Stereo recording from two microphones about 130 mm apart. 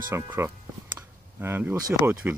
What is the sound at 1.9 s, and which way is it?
Speech, 15° right (ahead or behind).